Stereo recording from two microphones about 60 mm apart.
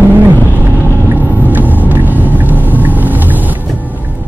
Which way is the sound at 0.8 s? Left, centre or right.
Left.